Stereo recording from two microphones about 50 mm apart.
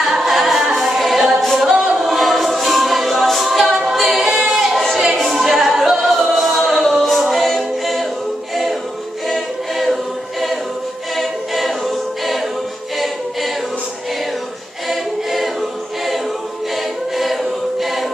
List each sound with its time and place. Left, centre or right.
0.0 s a capella: centre
2.0 s choir: centre
4.3 s a capella: centre
9.3 s choir: centre
11.1 s choir: centre
14.9 s a capella: centre
17.2 s choir: centre